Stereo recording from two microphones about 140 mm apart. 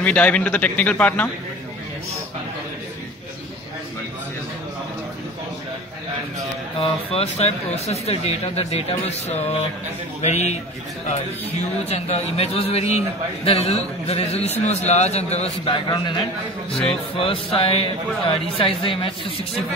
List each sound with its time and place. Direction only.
0.0 s a man's voice: 10° left (ahead or behind)
6.8 s speech: 45° left (ahead or behind)
11.8 s speech: 50° left (ahead or behind)